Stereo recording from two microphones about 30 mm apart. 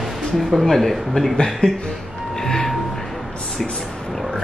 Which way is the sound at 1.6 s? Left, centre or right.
Left.